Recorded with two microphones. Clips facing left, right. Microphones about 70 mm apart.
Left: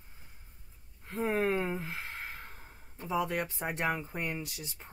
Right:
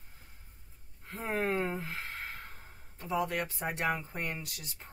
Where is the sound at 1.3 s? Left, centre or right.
Right.